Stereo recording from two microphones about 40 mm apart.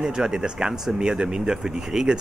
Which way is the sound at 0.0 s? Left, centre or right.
Centre.